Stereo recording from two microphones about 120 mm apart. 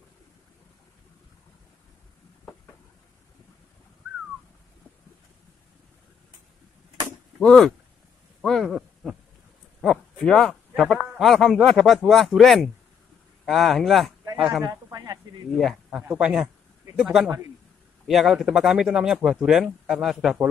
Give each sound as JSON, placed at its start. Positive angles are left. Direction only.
{"t": 7.3, "sound": "speech", "side_deg": 5}
{"t": 8.4, "sound": "a sound", "side_deg": 0}
{"t": 11.1, "sound": "speech", "side_deg": 0}
{"t": 14.6, "sound": "a sound", "side_deg": -25}
{"t": 15.5, "sound": "speech", "side_deg": 5}
{"t": 16.1, "sound": "a man's voice", "side_deg": -10}